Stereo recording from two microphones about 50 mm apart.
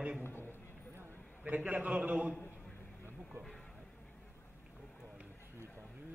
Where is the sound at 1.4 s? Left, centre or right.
Right.